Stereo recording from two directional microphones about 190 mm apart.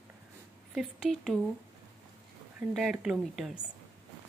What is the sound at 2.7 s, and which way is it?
Speech, centre (ahead or behind).